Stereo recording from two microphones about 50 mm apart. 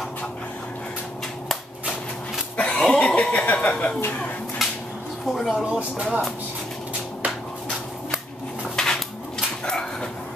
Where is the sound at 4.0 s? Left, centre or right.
Left.